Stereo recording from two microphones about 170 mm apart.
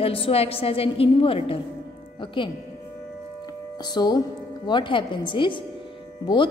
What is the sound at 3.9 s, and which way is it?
A woman's voice, 25° left (ahead or behind).